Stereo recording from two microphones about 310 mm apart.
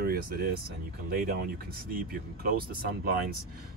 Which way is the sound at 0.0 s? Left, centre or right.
Right.